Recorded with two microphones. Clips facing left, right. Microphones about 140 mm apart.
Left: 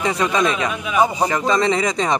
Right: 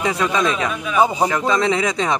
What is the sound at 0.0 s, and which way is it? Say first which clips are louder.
A man's voice: even; centre (ahead or behind).